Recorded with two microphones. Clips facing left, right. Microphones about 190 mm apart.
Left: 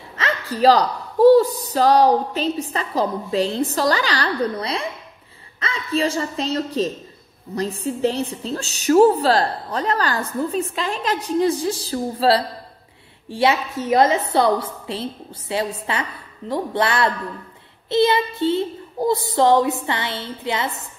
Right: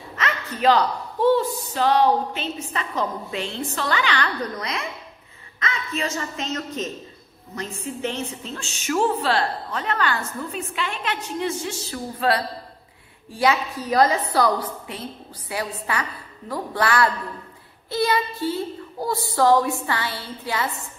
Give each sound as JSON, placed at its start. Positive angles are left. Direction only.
{"t": 0.2, "sound": "a woman's voice", "side_deg": 35}